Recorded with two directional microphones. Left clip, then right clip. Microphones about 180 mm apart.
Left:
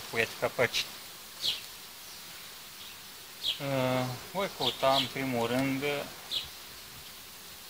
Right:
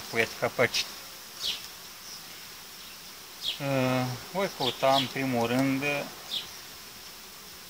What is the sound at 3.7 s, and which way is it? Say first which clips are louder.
Bee: right 4 dB; 15° left (ahead or behind).